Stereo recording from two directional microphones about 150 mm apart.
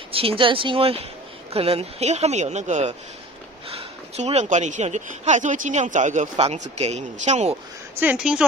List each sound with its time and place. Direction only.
0.1 s speech: 40° right (ahead or behind); by 6.2 s 55° right (ahead or behind)
6.3 s speech: 45° right (ahead or behind)
8.0 s speech: 10° right (ahead or behind)